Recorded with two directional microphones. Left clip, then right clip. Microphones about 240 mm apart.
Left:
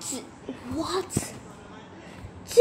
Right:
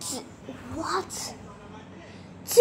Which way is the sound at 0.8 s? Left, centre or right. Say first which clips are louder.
Even; centre.